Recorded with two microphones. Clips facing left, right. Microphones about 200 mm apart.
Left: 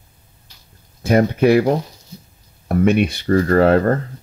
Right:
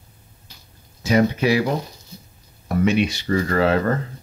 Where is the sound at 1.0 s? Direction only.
55° left (ahead or behind).